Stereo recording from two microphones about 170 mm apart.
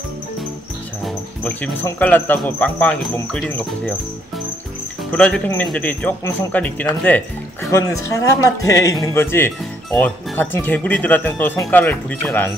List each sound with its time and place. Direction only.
1.0 s speech: 10° left (ahead or behind)
5.1 s speech: 5° left (ahead or behind)